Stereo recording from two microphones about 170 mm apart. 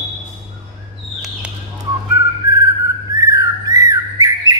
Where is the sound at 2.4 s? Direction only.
65° left (ahead or behind).